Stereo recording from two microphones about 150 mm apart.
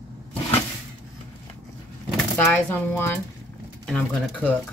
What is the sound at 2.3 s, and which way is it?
Speech, 10° left (ahead or behind).